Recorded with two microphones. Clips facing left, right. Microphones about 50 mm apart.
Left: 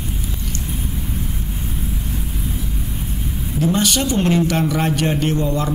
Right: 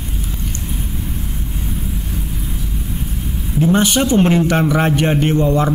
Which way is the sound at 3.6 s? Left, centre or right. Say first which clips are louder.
Right 4 dB; right.